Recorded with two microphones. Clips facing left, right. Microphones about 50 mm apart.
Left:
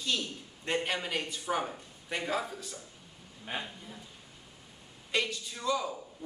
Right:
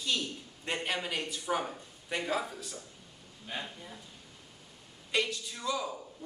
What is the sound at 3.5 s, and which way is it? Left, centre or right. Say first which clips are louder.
Speech: left 2 dB; left.